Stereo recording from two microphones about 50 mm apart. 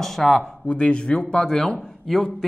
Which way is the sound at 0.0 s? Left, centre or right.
Centre.